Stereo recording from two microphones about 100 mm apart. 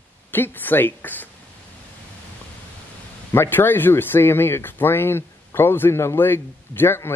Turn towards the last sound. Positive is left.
turn(degrees=25)  # may be behind; listen again after turning